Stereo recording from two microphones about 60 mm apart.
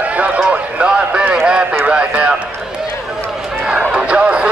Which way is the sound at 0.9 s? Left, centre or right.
Centre.